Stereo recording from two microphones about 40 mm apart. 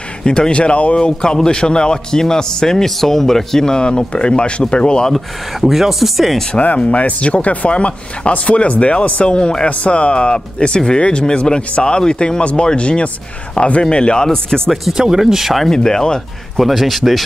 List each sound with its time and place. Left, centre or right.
0.2 s a man's voice: left
0.9 s a man's voice: left
5.1 s speech: centre
6.8 s a man's voice: left; by 14.6 s centre
15.0 s speech: centre
15.7 s speech: centre
16.5 s speech: centre